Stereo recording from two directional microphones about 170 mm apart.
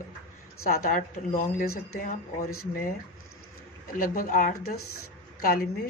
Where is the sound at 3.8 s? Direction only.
55° left (ahead or behind).